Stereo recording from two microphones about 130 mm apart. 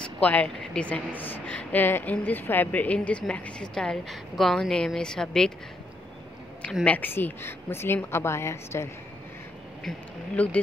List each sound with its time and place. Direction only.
0.2 s a woman's voice: 10° left (ahead or behind)
6.6 s a woman's voice: 10° left (ahead or behind)
9.8 s a woman's voice: 10° left (ahead or behind)